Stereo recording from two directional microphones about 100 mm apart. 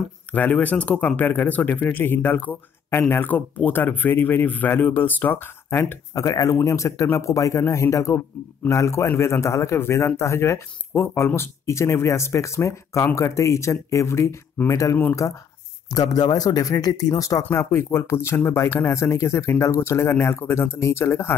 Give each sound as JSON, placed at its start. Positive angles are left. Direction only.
{"t": 0.3, "sound": "speech", "side_deg": 15}
{"t": 6.2, "sound": "a man's voice", "side_deg": 35}
{"t": 17.4, "sound": "speech", "side_deg": 25}